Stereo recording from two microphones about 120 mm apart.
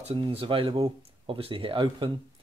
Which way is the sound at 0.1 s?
55° right (ahead or behind).